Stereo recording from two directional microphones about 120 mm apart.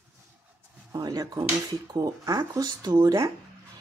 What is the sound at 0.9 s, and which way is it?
Speech, 35° right (ahead or behind).